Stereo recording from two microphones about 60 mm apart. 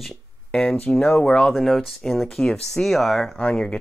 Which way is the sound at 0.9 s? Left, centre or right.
Centre.